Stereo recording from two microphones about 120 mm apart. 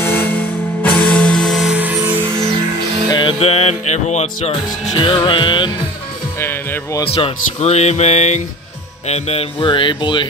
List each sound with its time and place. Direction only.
0.0 s music: 20° left (ahead or behind); by 2.1 s 15° right (ahead or behind)
3.1 s music: 40° left (ahead or behind)
3.3 s music: 60° left (ahead or behind)
4.9 s music: 45° left (ahead or behind)
6.4 s speech: 15° left (ahead or behind)
7.1 s speech: 55° left (ahead or behind); by 8.4 s 70° left (ahead or behind)
9.0 s music: 60° left (ahead or behind); by 10.2 s 40° left (ahead or behind)